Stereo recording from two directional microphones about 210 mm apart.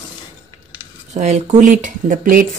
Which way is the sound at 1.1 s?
35° right (ahead or behind).